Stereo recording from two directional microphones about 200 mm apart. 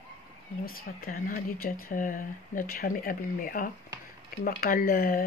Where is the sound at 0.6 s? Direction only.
50° left (ahead or behind).